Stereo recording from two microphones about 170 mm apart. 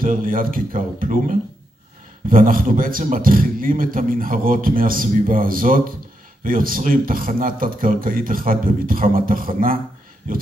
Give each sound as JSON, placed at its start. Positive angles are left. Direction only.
{"t": 0.0, "sound": "a man's voice", "side_deg": -55}